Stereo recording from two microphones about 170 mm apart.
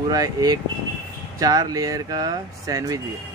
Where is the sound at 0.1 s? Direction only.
20° right (ahead or behind).